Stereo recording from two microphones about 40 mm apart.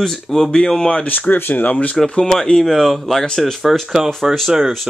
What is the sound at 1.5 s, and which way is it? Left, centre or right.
Speech, left.